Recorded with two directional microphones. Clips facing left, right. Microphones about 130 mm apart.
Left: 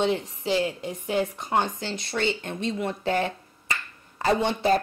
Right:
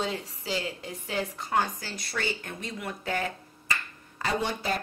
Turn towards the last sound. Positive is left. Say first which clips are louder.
# left 7 dB
turn(degrees=25)  # may be behind; listen again after turning